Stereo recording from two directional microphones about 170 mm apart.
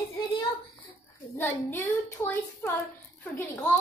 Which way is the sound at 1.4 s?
10° left (ahead or behind).